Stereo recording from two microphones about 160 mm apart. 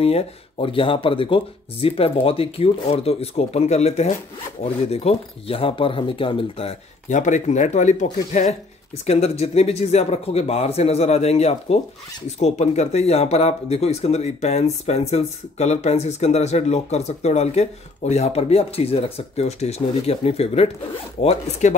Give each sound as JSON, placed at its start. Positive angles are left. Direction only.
{"t": 0.0, "sound": "speech", "side_deg": 35}